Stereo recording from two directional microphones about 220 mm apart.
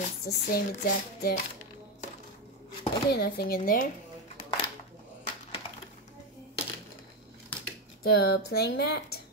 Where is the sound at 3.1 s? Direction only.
45° left (ahead or behind).